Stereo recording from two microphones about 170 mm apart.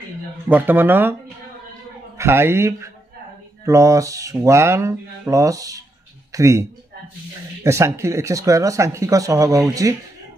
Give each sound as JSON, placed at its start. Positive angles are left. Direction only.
{"t": 0.5, "sound": "speech", "side_deg": -10}
{"t": 2.1, "sound": "speech", "side_deg": -15}